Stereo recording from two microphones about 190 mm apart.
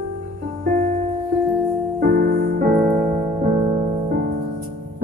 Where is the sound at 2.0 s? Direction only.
55° right (ahead or behind).